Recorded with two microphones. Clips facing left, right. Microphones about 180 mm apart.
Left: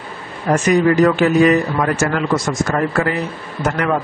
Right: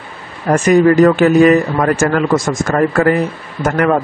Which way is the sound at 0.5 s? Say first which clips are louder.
Right 4 dB; 50° right (ahead or behind).